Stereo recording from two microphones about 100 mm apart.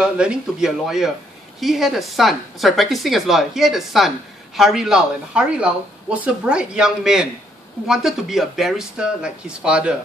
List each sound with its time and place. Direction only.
0.0 s a woman's voice: 10° right (ahead or behind)